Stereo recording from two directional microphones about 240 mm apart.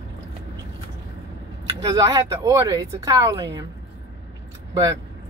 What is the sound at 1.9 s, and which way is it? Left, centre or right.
Speech, centre.